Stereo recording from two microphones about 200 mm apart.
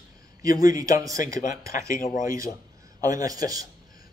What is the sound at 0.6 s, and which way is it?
Speech, 15° right (ahead or behind).